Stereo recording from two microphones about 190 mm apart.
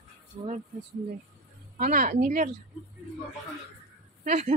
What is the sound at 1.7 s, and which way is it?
Speech, 45° right (ahead or behind).